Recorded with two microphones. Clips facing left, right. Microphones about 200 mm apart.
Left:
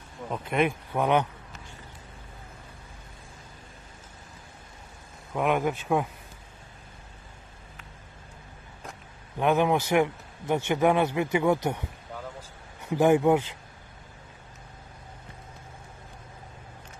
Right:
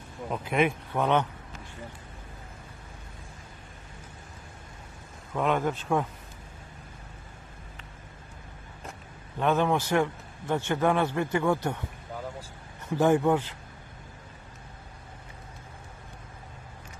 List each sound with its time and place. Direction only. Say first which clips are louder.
0.3 s speech: even; centre (ahead or behind)
0.9 s a man's voice: left 1 dB; 10° left (ahead or behind)
5.3 s a man's voice: left 1 dB; 10° left (ahead or behind)
9.4 s a man's voice: left 2 dB; 15° left (ahead or behind)
12.8 s a man's voice: left 2 dB; 15° left (ahead or behind)